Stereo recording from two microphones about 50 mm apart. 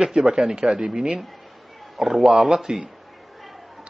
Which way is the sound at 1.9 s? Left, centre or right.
Centre.